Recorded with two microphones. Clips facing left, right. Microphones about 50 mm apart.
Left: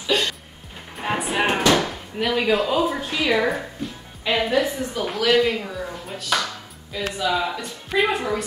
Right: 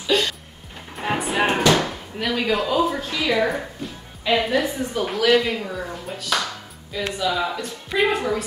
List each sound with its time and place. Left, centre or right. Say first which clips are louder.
0.0 s music: right 1 dB; centre
1.7 s chop: even; centre
2.1 s a man's voice: left 2 dB; centre
3.0 s a man's voice: even; centre
3.4 s a woman's voice: left 1 dB; centre
5.7 s a sound: right 1 dB; centre
6.9 s a woman's voice: even; centre